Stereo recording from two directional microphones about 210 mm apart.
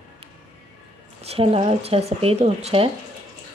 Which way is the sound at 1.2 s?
25° right (ahead or behind).